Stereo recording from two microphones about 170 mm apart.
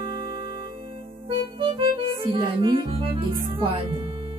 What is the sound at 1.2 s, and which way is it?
Music, 30° right (ahead or behind).